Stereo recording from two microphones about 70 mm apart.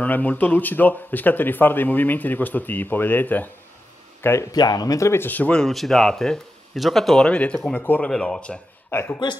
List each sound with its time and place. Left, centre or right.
0.0 s speech: left
4.2 s speech: left
4.5 s speech: left
5.2 s speech: left
5.5 s speech: centre
7.2 s speech: centre
8.9 s speech: left